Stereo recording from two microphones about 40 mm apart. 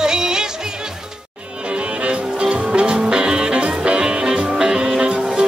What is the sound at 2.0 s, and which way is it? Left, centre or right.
Music, right.